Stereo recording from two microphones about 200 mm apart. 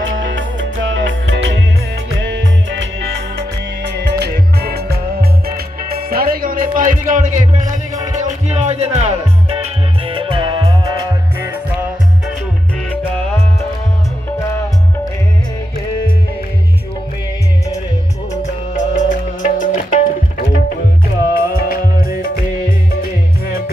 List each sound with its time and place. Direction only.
0.0 s music: 65° right (ahead or behind); by 11.5 s 15° right (ahead or behind)
18.4 s music: 40° left (ahead or behind)